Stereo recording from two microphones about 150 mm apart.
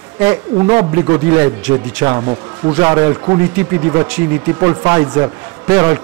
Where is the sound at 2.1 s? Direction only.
30° right (ahead or behind).